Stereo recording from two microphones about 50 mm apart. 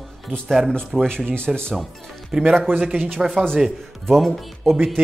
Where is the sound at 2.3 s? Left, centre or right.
Centre.